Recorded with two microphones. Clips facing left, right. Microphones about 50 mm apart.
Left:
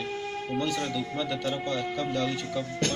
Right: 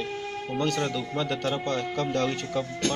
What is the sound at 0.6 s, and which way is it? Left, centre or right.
Speech, right.